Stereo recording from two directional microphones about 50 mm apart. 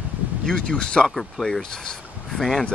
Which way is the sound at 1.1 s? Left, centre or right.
Centre.